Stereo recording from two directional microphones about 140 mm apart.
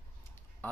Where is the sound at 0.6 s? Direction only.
15° left (ahead or behind).